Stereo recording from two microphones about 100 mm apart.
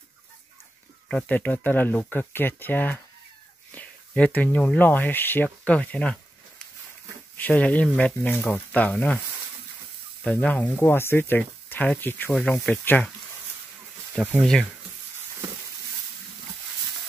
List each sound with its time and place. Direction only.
1.0 s speech: 10° left (ahead or behind)
7.3 s speech: 15° left (ahead or behind)
10.2 s speech: 15° left (ahead or behind)
10.8 s speech: 25° left (ahead or behind)
12.3 s speech: 5° left (ahead or behind)
14.4 s speech: 5° left (ahead or behind)